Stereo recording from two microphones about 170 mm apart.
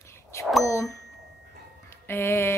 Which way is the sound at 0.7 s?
15° left (ahead or behind).